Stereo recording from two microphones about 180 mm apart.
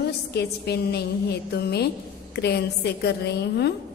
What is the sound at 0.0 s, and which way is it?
A woman's voice, 65° left (ahead or behind).